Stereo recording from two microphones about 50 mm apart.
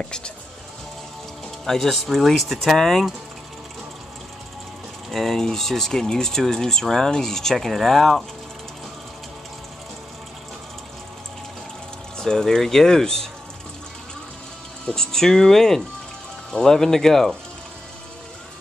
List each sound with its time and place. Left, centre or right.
0.0 s speech: centre
1.7 s speech: centre
5.1 s speech: centre
12.2 s speech: centre
15.0 s speech: centre